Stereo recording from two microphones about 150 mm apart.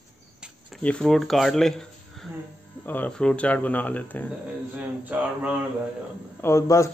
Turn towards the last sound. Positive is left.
turn(degrees=20)  # may be behind; listen again after turning